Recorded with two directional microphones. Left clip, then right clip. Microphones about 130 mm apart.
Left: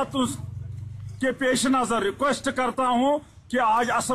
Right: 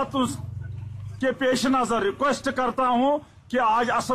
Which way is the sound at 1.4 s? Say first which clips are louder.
Even; centre (ahead or behind).